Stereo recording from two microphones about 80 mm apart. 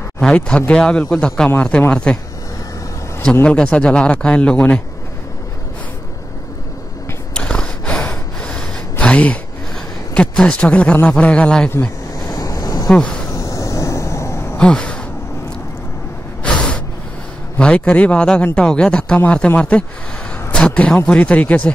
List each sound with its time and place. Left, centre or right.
0.2 s a man's voice: centre
3.4 s a man's voice: centre
7.3 s gasp: centre
10.1 s a man's voice: centre
12.2 s waves: left
12.9 s speech: centre
13.3 s vehicle: left
14.6 s a sound: centre
16.4 s gasp: centre
17.6 s a man's voice: centre